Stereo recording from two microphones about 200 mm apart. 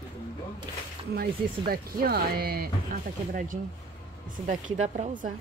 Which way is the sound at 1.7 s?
50° right (ahead or behind).